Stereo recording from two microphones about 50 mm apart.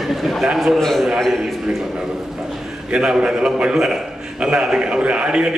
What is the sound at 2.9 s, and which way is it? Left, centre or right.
A man's voice, centre.